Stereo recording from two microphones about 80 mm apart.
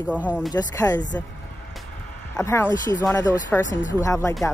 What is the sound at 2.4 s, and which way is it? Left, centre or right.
Speech, left.